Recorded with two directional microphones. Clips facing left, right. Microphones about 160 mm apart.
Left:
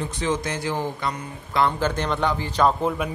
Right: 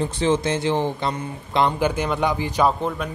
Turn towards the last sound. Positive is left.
turn(degrees=5)  # may be behind; listen again after turning